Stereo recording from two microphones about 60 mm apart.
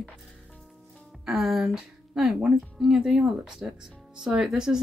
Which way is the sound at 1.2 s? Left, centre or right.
Centre.